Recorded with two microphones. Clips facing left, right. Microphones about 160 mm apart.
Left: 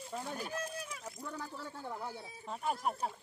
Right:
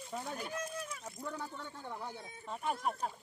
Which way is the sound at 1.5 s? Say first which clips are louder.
Left 2 dB; 5° left (ahead or behind).